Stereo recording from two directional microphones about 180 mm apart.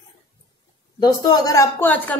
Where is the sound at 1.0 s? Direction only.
20° left (ahead or behind).